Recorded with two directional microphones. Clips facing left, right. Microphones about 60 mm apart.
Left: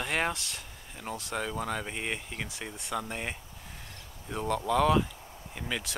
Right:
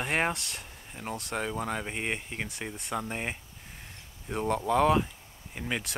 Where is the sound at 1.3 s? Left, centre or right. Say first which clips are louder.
Right 1 dB; centre.